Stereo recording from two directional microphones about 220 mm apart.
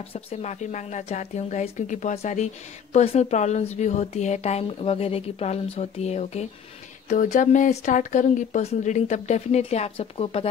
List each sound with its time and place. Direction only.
0.1 s speech: 30° left (ahead or behind)